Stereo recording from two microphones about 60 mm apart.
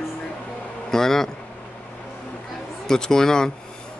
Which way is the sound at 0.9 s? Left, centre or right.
Centre.